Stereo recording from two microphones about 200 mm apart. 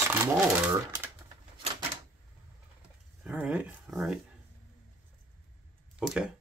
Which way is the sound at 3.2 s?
5° right (ahead or behind).